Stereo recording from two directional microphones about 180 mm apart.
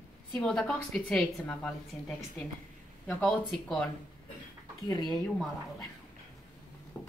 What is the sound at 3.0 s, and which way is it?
Speech, 5° left (ahead or behind).